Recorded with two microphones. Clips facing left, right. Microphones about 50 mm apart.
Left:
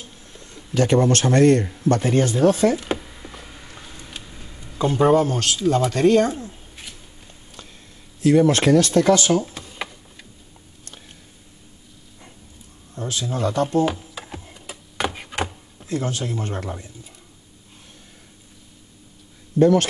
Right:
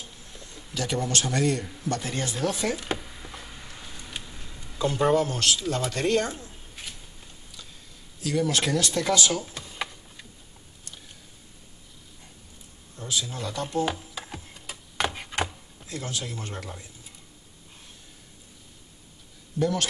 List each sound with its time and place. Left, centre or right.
0.7 s speech: left
2.9 s a sound: centre
4.7 s a man's voice: left
8.2 s speech: left
9.3 s speech: centre
9.7 s a sound: centre
12.9 s speech: left
13.8 s a sound: centre
15.9 s speech: left
19.6 s speech: left